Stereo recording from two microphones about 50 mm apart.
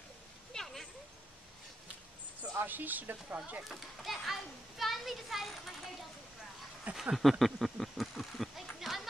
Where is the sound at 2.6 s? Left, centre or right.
Right.